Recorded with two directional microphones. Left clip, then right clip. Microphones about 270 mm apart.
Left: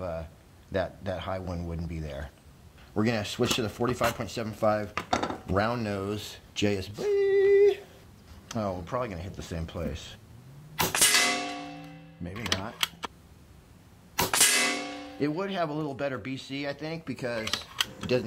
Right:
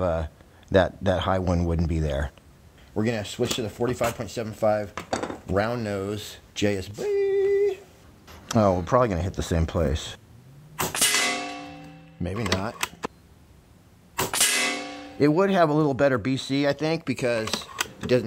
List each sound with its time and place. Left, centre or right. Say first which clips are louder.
0.0 s speech: right 9 dB; right
2.9 s speech: right 1 dB; centre
4.9 s dishes: left 1 dB; centre
5.5 s speech: right 3 dB; centre
8.5 s speech: right 11 dB; right
10.9 s a sound: right 1 dB; centre
12.2 s speech: right 5 dB; right
14.3 s music: right 1 dB; centre
15.1 s speech: right 10 dB; right